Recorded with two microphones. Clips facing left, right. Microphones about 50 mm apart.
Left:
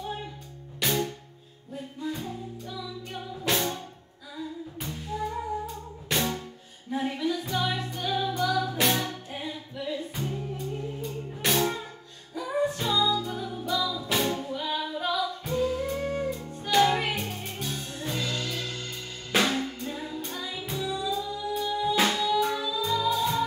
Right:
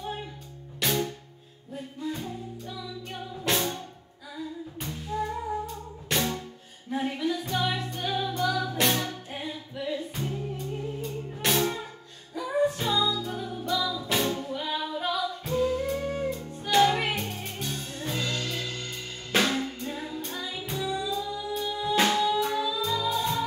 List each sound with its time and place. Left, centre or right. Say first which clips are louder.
0.7 s music: even; centre
5.7 s music: even; centre
9.3 s music: even; centre
15.0 s music: left 2 dB; centre